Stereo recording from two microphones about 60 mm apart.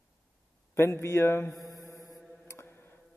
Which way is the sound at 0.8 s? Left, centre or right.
Left.